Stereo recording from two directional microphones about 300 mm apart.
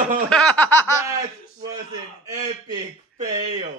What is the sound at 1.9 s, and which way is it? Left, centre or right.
Speech, centre.